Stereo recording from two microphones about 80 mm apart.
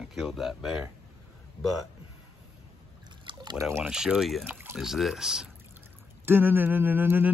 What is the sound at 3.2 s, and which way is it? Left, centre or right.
Pour, right.